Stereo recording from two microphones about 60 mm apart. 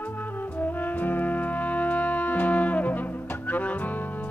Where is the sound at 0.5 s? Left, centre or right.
Left.